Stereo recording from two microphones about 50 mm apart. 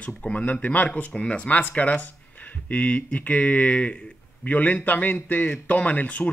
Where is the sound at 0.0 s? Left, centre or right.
Left.